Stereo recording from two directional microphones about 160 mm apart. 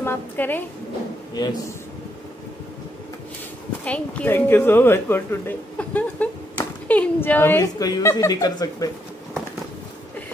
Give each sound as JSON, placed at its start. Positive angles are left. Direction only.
{"t": 0.0, "sound": "a woman's voice", "side_deg": 15}
{"t": 1.3, "sound": "a man's voice", "side_deg": 25}
{"t": 3.8, "sound": "a woman's voice", "side_deg": 10}